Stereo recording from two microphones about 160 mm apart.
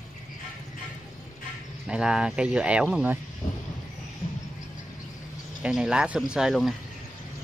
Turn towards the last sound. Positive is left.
turn(degrees=0)  # may be behind; listen again after turning